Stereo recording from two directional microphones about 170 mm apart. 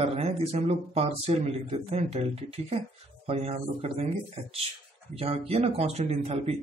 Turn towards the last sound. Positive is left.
turn(degrees=-35)  # may be behind; listen again after turning